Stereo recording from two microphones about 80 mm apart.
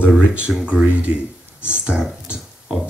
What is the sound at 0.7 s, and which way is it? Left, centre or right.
Speech, centre.